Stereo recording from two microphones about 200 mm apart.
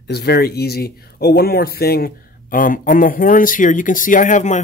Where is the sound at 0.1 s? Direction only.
55° left (ahead or behind).